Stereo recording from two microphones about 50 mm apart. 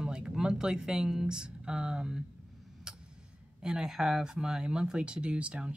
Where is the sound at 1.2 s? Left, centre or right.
Centre.